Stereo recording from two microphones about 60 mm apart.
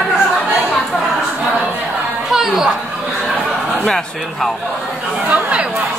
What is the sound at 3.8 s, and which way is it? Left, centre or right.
Speech, centre.